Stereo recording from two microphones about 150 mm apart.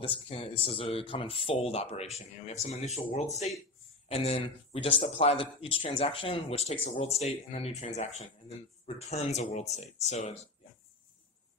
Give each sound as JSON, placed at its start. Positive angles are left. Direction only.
{"t": 0.0, "sound": "a man's voice", "side_deg": 40}